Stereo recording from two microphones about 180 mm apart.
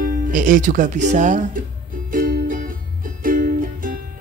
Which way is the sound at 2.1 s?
50° right (ahead or behind).